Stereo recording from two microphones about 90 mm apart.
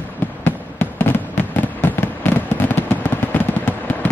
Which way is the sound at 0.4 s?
20° left (ahead or behind).